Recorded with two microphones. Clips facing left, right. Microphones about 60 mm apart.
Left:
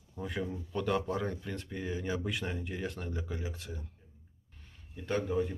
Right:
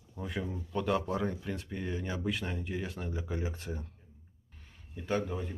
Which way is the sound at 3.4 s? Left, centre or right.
Right.